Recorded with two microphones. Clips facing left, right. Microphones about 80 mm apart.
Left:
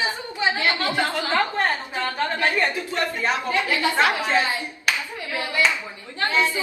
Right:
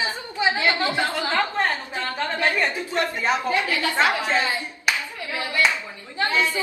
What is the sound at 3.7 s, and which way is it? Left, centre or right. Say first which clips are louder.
Speech: left 2 dB; left.